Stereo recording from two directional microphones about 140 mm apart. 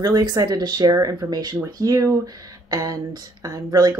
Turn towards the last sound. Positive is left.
turn(degrees=-25)  # may be behind; listen again after turning